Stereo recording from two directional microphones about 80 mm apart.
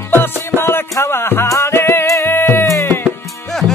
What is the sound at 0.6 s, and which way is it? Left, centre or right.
Music, left.